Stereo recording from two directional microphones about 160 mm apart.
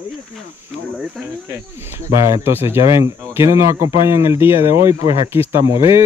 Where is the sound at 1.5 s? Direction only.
15° right (ahead or behind).